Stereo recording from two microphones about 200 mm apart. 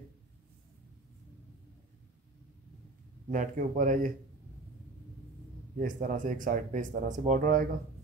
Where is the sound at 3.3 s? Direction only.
40° right (ahead or behind).